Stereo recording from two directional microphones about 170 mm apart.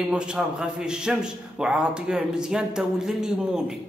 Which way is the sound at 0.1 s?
5° right (ahead or behind).